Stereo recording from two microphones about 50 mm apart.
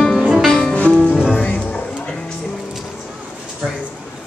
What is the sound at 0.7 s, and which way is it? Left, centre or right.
Music, left.